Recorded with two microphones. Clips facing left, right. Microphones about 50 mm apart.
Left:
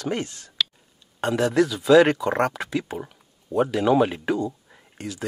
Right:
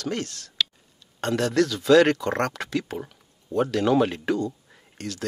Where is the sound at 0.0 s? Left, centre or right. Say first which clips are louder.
Left 2 dB; centre.